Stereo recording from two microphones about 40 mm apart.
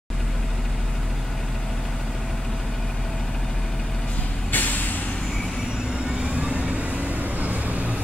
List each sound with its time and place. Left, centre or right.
4.5 s vehicle: left
6.0 s vehicle: right